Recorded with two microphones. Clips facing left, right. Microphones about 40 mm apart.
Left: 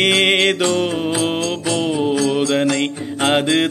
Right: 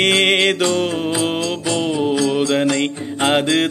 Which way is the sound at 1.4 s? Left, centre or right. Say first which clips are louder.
Even; centre.